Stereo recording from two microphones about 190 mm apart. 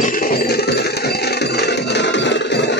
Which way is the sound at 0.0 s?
45° left (ahead or behind).